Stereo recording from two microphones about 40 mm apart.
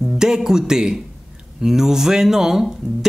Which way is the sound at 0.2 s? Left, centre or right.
Centre.